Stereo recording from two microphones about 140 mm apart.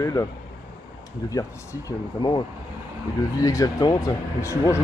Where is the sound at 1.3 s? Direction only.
25° left (ahead or behind).